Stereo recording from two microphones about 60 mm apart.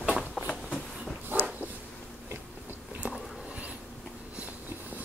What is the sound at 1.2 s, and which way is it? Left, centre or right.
Dog, right.